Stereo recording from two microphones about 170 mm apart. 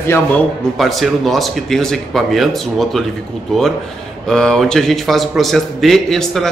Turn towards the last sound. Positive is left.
turn(degrees=0)  # may be behind; listen again after turning